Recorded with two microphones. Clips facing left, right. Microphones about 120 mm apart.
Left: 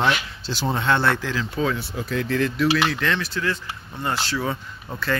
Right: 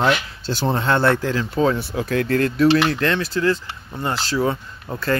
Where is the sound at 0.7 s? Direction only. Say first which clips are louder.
Right 3 dB; 40° right (ahead or behind).